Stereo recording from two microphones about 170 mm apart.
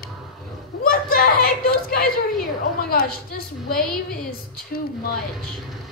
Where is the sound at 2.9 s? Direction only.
65° left (ahead or behind).